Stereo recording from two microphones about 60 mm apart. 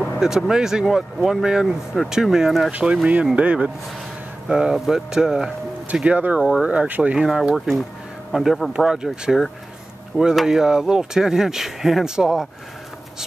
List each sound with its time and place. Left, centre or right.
0.5 s speech: centre
2.8 s speech: centre
6.0 s speech: right
6.4 s speech: centre
7.2 s speech: centre
8.7 s speech: centre